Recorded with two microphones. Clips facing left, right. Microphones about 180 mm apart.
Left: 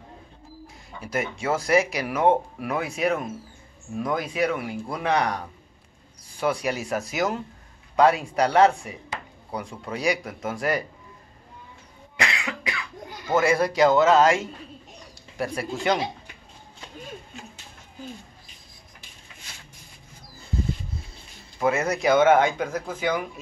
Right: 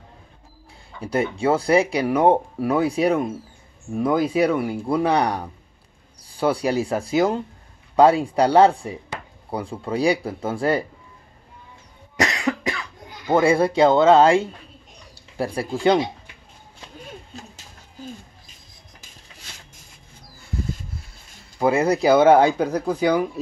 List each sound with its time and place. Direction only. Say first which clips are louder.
1.0 s speech: right 6 dB; 30° right (ahead or behind)
12.2 s cough: right 7 dB; 40° right (ahead or behind)
13.3 s a man's voice: right 4 dB; 30° right (ahead or behind)
21.5 s speech: right 5 dB; 30° right (ahead or behind)